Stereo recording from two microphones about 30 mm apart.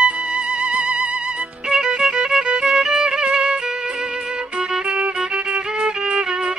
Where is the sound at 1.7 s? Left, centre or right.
Right.